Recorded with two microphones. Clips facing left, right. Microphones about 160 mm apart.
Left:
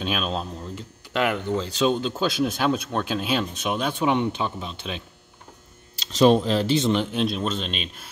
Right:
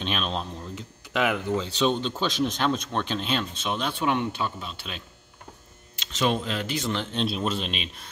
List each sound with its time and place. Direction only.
0.0 s speech: 5° left (ahead or behind)
5.9 s speech: 35° left (ahead or behind)
6.9 s speech: 15° left (ahead or behind)
7.2 s speech: centre (ahead or behind)